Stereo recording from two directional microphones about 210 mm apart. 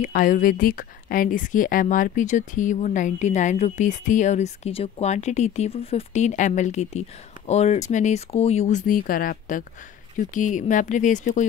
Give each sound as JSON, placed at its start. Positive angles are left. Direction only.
{"t": 0.0, "sound": "a woman's voice", "side_deg": 40}